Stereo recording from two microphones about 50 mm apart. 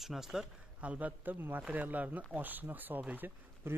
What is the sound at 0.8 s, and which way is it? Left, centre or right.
Speech, right.